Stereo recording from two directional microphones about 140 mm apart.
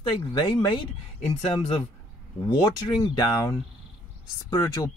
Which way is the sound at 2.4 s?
30° left (ahead or behind).